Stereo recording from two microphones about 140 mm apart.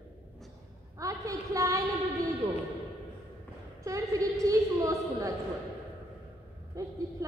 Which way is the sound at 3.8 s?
25° right (ahead or behind).